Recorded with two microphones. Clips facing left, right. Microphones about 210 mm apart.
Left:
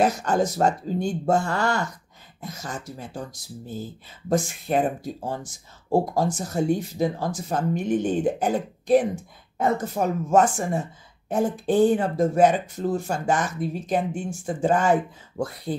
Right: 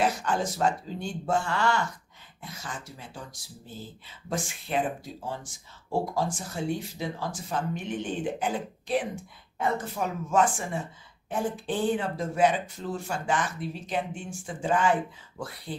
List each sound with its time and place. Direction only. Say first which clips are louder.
0.0 s speech: left 6 dB; 45° left (ahead or behind)